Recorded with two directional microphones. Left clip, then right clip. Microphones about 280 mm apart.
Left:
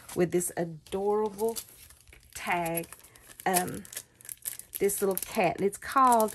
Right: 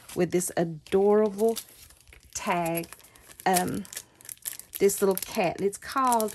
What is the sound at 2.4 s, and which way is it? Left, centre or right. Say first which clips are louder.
Speech: right 2 dB; centre.